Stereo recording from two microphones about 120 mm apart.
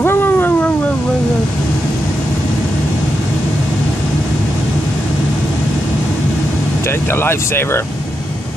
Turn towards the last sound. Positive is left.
turn(degrees=20)  # may be behind; listen again after turning